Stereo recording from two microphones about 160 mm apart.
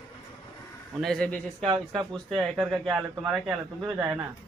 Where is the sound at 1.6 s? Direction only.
30° right (ahead or behind).